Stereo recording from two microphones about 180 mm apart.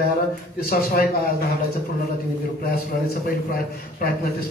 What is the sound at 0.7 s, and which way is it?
Speech, 55° left (ahead or behind).